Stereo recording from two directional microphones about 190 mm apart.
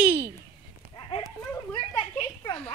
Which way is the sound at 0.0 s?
10° right (ahead or behind).